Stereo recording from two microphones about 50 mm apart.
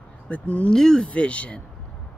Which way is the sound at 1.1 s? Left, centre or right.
Left.